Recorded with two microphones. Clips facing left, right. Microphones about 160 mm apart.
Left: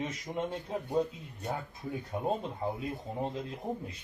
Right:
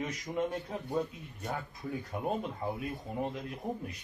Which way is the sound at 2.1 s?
25° left (ahead or behind).